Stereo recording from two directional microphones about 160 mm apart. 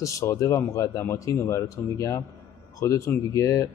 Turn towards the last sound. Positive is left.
turn(degrees=20)  # may be behind; listen again after turning